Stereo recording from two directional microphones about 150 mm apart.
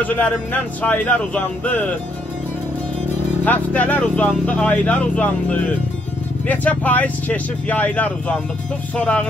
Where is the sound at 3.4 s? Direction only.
10° left (ahead or behind).